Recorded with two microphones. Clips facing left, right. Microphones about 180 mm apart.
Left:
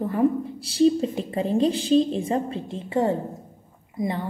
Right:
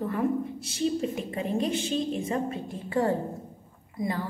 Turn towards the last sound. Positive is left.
turn(degrees=25)  # may be behind; listen again after turning